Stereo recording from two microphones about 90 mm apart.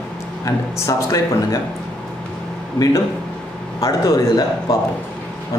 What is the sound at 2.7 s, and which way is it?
Speech, 40° left (ahead or behind).